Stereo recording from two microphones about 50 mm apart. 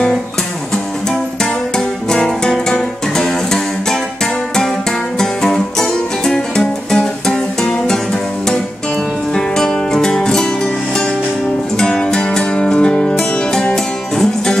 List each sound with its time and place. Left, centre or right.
1.4 s music: centre
5.2 s music: centre
9.3 s music: centre